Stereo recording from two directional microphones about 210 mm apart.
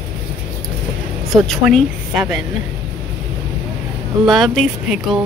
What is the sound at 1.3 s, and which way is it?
Speech, centre (ahead or behind).